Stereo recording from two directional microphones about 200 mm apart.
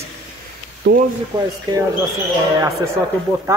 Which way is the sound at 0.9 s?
60° right (ahead or behind).